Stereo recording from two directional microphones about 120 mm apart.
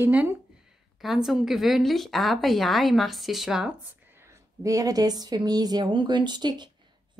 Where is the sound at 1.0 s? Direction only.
Centre (ahead or behind).